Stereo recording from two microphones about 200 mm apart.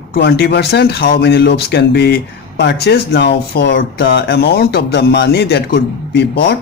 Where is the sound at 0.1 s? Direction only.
55° left (ahead or behind).